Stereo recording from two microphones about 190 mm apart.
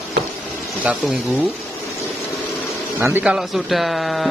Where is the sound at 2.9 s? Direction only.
5° right (ahead or behind).